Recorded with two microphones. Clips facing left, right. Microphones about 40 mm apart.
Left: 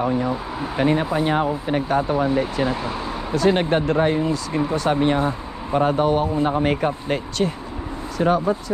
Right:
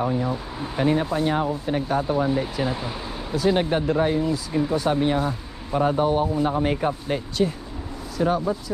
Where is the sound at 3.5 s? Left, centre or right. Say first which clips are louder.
Left 2 dB; left.